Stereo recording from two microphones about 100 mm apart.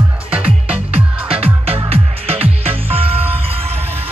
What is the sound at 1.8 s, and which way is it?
Music, 85° right.